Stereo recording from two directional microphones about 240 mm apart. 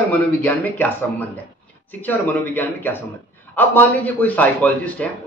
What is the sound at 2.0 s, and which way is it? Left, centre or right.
A man's voice, centre.